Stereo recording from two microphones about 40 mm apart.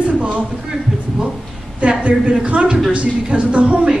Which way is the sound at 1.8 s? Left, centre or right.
Right.